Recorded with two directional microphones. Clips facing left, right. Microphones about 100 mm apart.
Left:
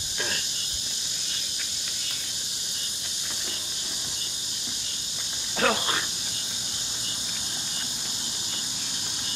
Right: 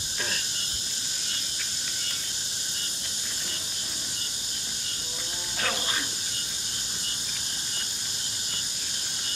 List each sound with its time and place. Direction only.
5.6 s cricket: 65° left (ahead or behind)